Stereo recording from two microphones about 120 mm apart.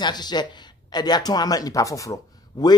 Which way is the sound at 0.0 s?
35° left (ahead or behind).